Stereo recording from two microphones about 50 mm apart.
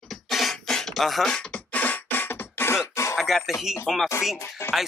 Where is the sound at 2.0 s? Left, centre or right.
Left.